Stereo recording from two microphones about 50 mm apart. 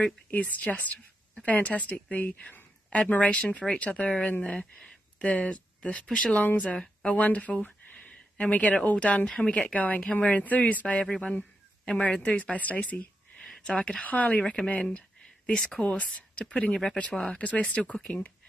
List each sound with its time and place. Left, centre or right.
0.0 s speech: left
4.4 s speech: centre
7.2 s a sound: left
8.4 s speech: left
11.0 s speech: centre
14.3 s speech: centre
14.8 s a sound: left
15.8 s speech: left